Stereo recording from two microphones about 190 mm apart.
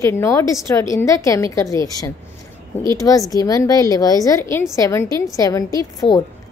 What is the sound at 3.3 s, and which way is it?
A woman's voice, 20° left (ahead or behind).